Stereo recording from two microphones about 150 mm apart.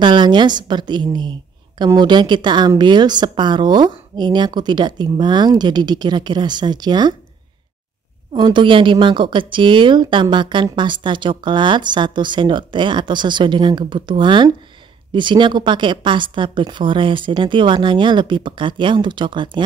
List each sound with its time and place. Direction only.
0.0 s a woman's voice: 30° right (ahead or behind)
8.3 s a woman's voice: 30° right (ahead or behind)